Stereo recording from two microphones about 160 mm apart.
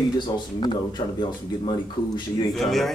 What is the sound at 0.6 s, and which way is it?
Speech, 30° left (ahead or behind).